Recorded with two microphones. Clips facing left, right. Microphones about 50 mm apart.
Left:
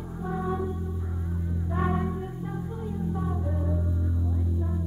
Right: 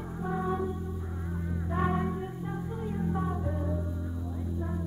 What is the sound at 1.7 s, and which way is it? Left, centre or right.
Music, centre.